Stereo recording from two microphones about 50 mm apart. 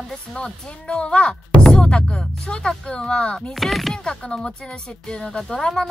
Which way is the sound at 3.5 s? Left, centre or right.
Centre.